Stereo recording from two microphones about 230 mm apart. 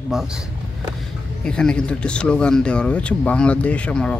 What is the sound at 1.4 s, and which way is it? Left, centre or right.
Speech, centre.